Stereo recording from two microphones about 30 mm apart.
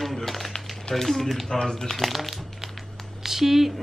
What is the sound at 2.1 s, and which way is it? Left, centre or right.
A woman's voice, centre.